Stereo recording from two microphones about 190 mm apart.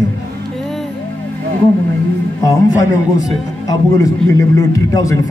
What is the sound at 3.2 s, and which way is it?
A man's voice, 20° left (ahead or behind).